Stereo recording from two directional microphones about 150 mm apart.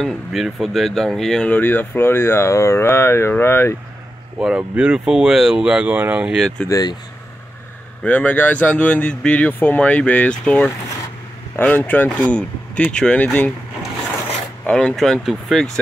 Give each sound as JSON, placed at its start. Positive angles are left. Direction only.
{"t": 0.0, "sound": "speech", "side_deg": 0}
{"t": 4.4, "sound": "speech", "side_deg": -5}
{"t": 6.7, "sound": "speech", "side_deg": 25}
{"t": 8.0, "sound": "speech", "side_deg": 10}
{"t": 14.7, "sound": "speech", "side_deg": 5}